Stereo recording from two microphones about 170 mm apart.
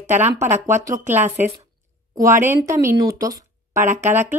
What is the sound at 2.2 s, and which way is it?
Speech, 15° right (ahead or behind).